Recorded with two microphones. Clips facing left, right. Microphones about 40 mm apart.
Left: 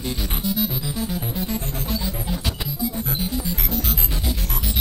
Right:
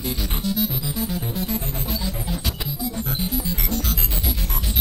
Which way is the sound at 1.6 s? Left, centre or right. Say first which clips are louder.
Even; right.